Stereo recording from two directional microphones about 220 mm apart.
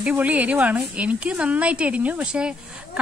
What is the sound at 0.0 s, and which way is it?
A woman's voice, 5° right (ahead or behind).